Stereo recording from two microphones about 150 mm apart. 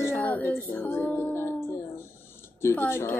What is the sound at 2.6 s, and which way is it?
Speech, 15° left (ahead or behind).